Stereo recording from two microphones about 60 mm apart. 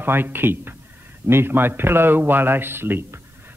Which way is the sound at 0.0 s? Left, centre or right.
Right.